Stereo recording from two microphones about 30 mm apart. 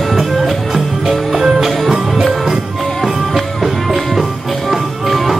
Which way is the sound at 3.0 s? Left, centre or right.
Centre.